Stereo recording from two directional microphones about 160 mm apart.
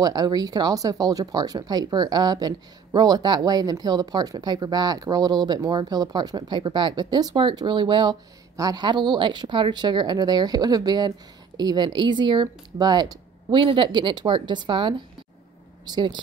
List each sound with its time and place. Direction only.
0.0 s speech: 25° right (ahead or behind)